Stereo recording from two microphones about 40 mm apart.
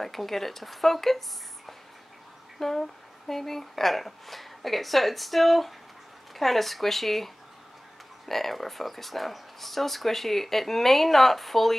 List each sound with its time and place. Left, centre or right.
0.0 s speech: centre
2.6 s speech: centre
8.3 s speech: centre